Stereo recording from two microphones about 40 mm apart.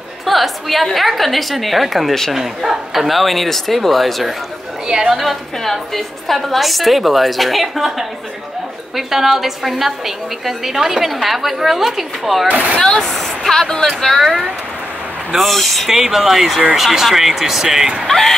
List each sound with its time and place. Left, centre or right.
0.2 s a woman's voice: centre
4.8 s a woman's voice: centre
5.1 s a woman's voice: centre
12.4 s speech: right
12.8 s a woman's voice: centre
15.3 s a woman's voice: centre
15.9 s a woman's voice: centre
18.0 s speech: centre